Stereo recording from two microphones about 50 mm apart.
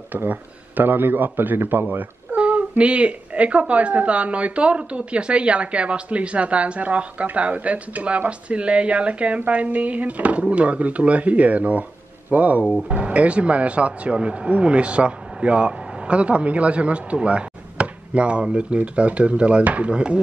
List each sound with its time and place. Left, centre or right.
0.1 s a man's voice: right
2.3 s female singing: right
2.8 s a man's voice: right